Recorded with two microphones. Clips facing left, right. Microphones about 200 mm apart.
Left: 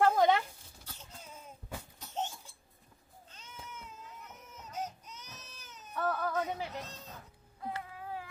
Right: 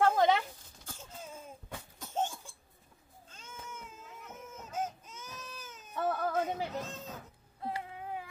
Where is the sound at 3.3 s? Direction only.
45° right (ahead or behind).